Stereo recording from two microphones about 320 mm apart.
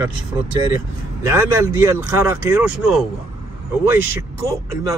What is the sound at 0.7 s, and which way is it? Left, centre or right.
Speech, centre.